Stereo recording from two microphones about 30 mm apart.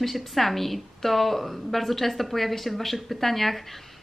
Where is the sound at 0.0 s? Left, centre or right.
Centre.